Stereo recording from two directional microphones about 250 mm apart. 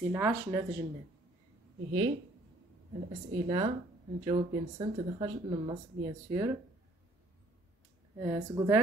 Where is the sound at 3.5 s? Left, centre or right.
Centre.